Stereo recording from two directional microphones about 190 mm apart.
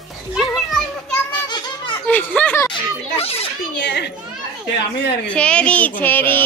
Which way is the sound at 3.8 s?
65° left (ahead or behind).